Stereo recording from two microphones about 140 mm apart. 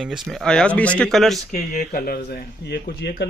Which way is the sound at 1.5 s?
90° left.